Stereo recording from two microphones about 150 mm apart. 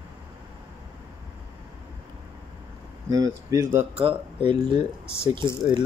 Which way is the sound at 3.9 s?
40° right (ahead or behind).